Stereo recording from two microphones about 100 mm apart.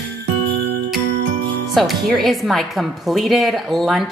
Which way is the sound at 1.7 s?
Centre (ahead or behind).